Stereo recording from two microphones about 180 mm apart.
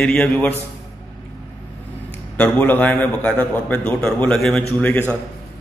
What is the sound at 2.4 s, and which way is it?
A man's voice, 10° left (ahead or behind).